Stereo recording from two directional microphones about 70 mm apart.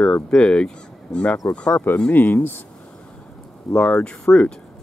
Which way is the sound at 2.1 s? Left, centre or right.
Left.